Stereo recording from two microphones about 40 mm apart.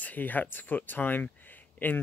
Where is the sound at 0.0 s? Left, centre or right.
Left.